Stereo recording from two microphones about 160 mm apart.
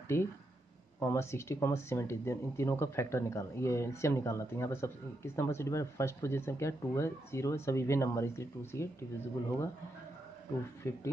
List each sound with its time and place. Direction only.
0.1 s speech: 15° left (ahead or behind)
10.8 s speech: 15° left (ahead or behind)